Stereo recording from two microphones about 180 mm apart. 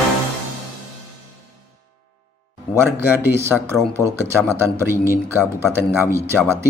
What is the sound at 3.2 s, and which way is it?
Speech, 15° right (ahead or behind).